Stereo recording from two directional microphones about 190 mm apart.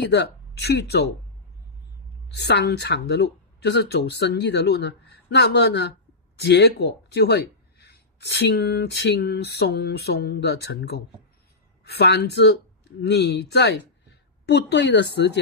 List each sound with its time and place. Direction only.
0.1 s speech: 60° left (ahead or behind)
2.2 s a woman's voice: 60° left (ahead or behind)